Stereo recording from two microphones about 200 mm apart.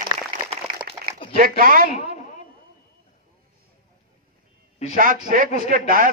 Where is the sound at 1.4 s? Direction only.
45° right (ahead or behind).